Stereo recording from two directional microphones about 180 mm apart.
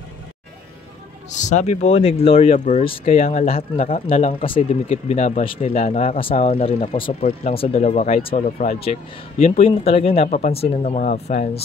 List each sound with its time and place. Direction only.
1.3 s speech: 40° left (ahead or behind)